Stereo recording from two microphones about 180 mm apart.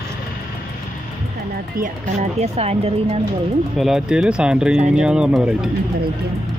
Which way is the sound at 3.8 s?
Centre (ahead or behind).